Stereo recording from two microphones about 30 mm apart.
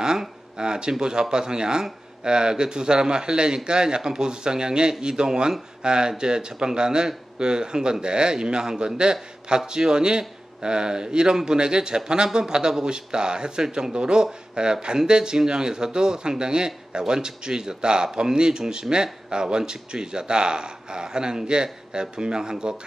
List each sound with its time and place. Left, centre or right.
0.6 s speech: right